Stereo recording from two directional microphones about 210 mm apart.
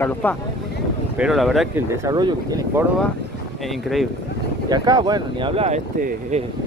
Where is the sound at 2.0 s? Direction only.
20° right (ahead or behind).